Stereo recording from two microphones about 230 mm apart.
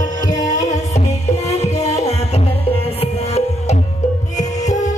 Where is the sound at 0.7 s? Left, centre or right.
Left.